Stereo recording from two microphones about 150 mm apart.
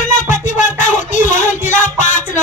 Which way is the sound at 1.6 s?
60° left (ahead or behind).